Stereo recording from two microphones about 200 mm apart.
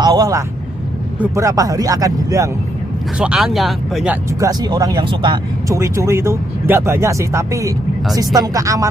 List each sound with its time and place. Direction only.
0.0 s vehicle: 20° right (ahead or behind)
1.2 s speech: 15° right (ahead or behind)
3.2 s speech: 5° right (ahead or behind)
4.5 s speech: 20° right (ahead or behind)